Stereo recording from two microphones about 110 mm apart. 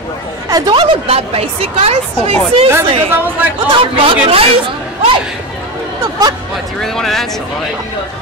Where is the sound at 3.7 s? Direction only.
55° right (ahead or behind).